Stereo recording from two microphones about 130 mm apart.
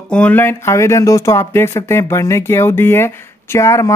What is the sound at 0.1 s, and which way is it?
Speech, 10° left (ahead or behind).